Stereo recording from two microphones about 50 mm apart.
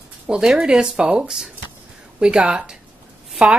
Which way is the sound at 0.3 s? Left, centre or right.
Centre.